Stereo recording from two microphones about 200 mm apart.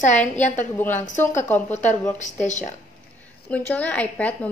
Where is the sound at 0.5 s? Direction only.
10° left (ahead or behind).